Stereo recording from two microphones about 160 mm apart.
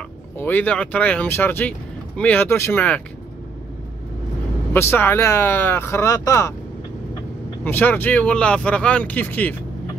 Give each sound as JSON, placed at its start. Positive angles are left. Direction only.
{"t": 0.4, "sound": "speech", "side_deg": 10}
{"t": 4.7, "sound": "speech", "side_deg": 15}
{"t": 7.6, "sound": "speech", "side_deg": 10}